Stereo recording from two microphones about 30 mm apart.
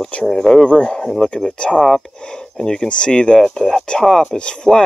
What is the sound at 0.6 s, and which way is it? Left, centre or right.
Speech, left.